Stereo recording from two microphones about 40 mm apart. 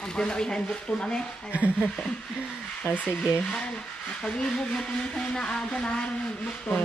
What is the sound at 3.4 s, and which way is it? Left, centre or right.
Speech, left.